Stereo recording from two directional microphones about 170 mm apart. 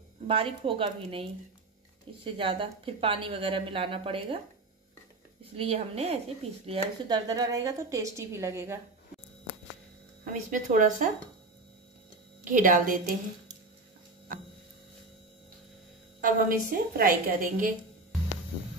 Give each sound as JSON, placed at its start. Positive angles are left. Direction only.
{"t": 0.3, "sound": "a woman's voice", "side_deg": -30}
{"t": 5.6, "sound": "a woman's voice", "side_deg": -35}
{"t": 7.2, "sound": "a woman's voice", "side_deg": -20}
{"t": 10.2, "sound": "a woman's voice", "side_deg": -50}
{"t": 12.4, "sound": "a woman's voice", "side_deg": -50}
{"t": 16.2, "sound": "a woman's voice", "side_deg": -55}